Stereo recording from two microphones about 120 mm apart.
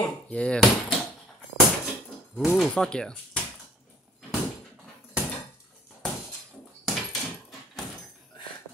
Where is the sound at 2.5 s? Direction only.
5° left (ahead or behind).